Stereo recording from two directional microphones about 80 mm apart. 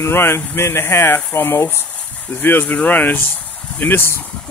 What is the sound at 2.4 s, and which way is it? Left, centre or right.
Speech, left.